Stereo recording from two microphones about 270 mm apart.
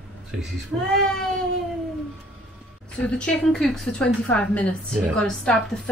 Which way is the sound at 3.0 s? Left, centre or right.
Centre.